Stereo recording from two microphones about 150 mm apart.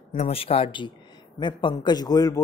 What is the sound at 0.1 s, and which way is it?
Speech, 45° left (ahead or behind).